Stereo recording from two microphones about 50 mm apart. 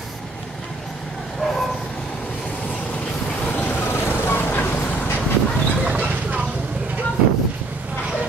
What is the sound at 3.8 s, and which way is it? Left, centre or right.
Vehicle, left.